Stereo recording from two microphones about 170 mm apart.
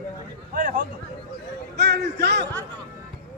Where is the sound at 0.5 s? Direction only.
55° right (ahead or behind).